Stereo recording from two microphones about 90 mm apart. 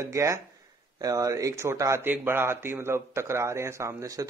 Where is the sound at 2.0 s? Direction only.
20° right (ahead or behind); by 4.2 s 40° right (ahead or behind).